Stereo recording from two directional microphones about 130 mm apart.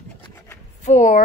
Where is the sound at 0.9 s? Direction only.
70° left (ahead or behind).